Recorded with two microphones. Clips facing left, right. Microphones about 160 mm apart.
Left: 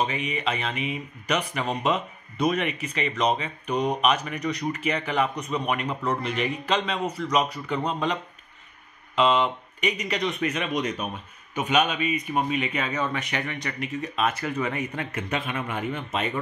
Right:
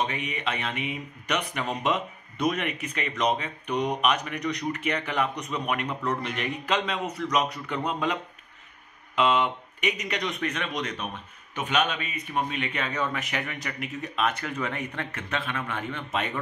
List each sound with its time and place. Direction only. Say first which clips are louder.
0.0 s speech: left 3 dB; centre (ahead or behind)